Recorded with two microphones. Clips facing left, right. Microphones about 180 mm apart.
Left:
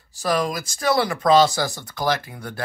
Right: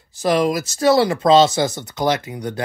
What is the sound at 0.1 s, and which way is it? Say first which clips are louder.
Speech: right 5 dB; 20° right (ahead or behind).